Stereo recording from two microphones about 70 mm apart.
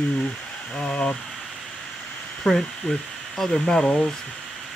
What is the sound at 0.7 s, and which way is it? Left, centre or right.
Speech, centre.